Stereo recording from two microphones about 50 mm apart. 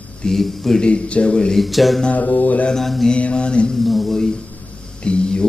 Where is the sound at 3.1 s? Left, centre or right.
Left.